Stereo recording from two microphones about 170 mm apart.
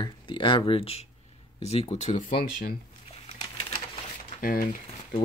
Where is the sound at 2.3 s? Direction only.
65° left (ahead or behind).